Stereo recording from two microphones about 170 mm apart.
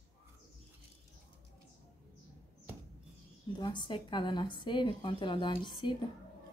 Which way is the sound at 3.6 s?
25° left (ahead or behind).